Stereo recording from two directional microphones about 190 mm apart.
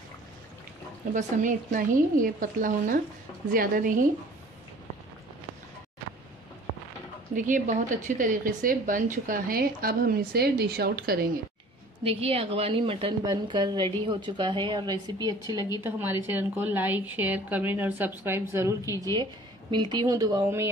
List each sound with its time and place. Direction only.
1.1 s a woman's voice: 45° right (ahead or behind)
7.3 s a woman's voice: 45° right (ahead or behind)
12.0 s a woman's voice: 30° right (ahead or behind); by 20.7 s 15° right (ahead or behind)